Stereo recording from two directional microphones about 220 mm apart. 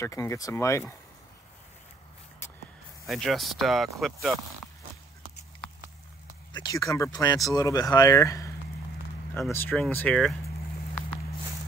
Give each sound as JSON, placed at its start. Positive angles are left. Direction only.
{"t": 0.0, "sound": "speech", "side_deg": 15}
{"t": 3.1, "sound": "speech", "side_deg": 0}
{"t": 6.5, "sound": "speech", "side_deg": 15}